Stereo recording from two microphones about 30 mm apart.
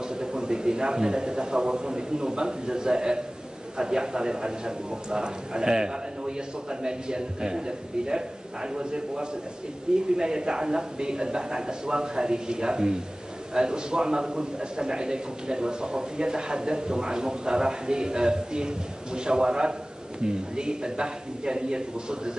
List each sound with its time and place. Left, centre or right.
0.1 s a man's voice: right